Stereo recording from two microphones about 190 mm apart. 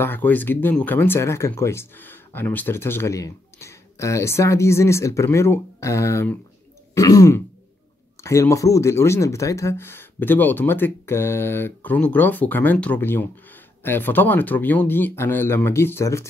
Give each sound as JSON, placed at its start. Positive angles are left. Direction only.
{"t": 0.0, "sound": "speech", "side_deg": 10}
{"t": 6.9, "sound": "throat clearing", "side_deg": 15}
{"t": 8.2, "sound": "speech", "side_deg": 15}